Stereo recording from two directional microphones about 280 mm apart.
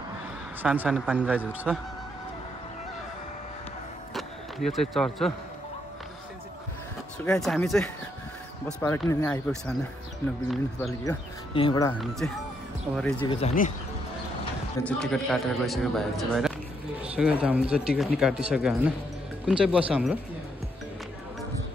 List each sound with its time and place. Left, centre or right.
0.6 s speech: centre
4.1 s vehicle: centre
7.2 s speech: centre
11.5 s speech: centre
13.2 s speech: centre
14.9 s speech: centre